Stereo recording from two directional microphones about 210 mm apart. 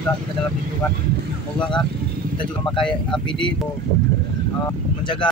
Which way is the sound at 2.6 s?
20° left (ahead or behind).